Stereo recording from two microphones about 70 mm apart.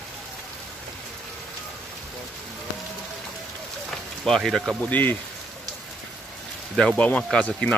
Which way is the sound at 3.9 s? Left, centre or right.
Centre.